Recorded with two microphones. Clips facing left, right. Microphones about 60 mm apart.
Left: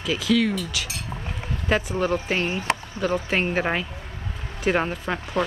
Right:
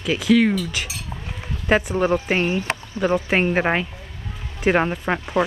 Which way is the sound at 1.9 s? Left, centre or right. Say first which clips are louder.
Right 4 dB; right.